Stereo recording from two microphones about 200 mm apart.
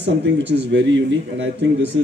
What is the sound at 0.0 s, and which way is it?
Speech, 60° right (ahead or behind).